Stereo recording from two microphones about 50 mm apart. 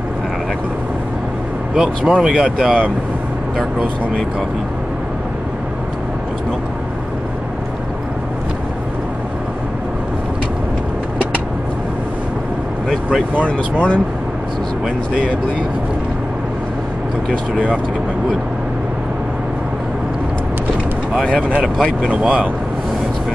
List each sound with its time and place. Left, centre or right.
1.8 s speech: centre
13.5 s speech: left
22.2 s speech: centre